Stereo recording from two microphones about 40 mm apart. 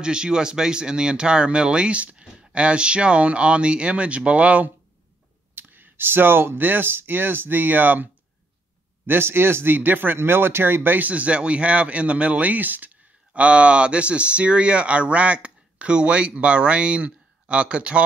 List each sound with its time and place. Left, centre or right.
0.0 s speech: right
5.5 s speech: right
9.0 s speech: right
9.8 s speech: right
10.1 s speech: right
11.0 s speech: right